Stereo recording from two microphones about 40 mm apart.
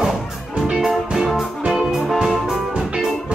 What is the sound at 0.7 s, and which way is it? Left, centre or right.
Music, centre.